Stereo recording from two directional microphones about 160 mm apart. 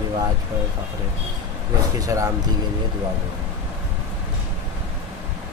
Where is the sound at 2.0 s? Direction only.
20° right (ahead or behind).